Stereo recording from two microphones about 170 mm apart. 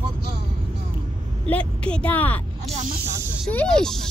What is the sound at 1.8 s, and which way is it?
Speech, 5° left (ahead or behind).